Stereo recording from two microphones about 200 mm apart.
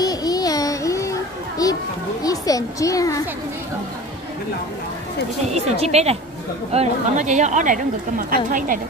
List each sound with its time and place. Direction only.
0.0 s music: 20° left (ahead or behind)
1.6 s a sound: 15° left (ahead or behind)
2.2 s a child's voice: 15° left (ahead or behind)
5.5 s a woman's voice: 35° right (ahead or behind)